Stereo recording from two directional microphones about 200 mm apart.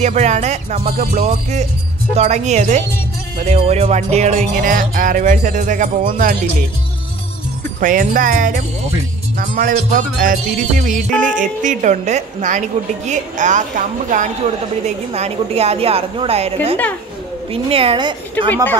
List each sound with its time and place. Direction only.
0.0 s a woman's voice: 35° right (ahead or behind)
0.9 s a woman's voice: 45° right (ahead or behind)
7.8 s a woman's voice: 40° right (ahead or behind); by 18.1 s 25° right (ahead or behind)
18.5 s speech: 10° left (ahead or behind)